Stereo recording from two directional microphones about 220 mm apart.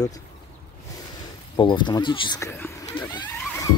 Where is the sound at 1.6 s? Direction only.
20° left (ahead or behind).